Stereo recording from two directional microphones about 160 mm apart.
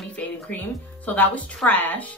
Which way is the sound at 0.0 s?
10° left (ahead or behind).